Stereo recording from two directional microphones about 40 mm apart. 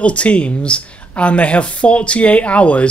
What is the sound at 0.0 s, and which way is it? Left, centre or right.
Speech, left.